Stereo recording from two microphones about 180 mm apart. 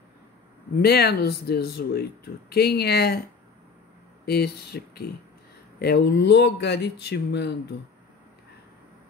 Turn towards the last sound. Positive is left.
turn(degrees=70)  # may be behind; listen again after turning